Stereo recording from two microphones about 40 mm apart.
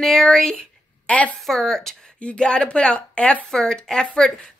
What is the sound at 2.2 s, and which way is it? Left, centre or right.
Speech, left.